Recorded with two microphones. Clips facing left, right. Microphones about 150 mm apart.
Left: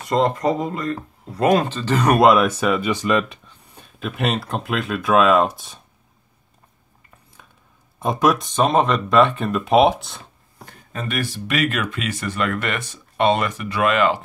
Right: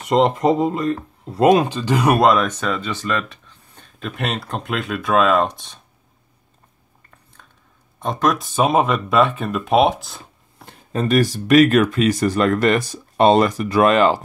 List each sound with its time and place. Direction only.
0.0 s speech: 20° right (ahead or behind)
2.1 s speech: 5° left (ahead or behind)
3.8 s speech: centre (ahead or behind)
7.4 s a sound: 10° left (ahead or behind)
8.0 s speech: 5° left (ahead or behind)
8.4 s speech: 5° right (ahead or behind)
10.6 s speech: 30° right (ahead or behind)